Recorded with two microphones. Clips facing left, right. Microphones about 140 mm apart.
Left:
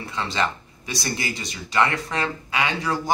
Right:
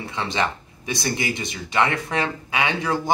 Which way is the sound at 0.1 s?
15° right (ahead or behind).